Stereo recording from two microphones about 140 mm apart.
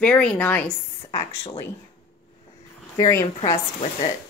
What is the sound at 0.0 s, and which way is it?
A woman's voice, 10° left (ahead or behind).